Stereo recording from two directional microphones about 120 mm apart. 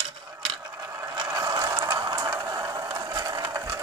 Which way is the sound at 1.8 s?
35° right (ahead or behind).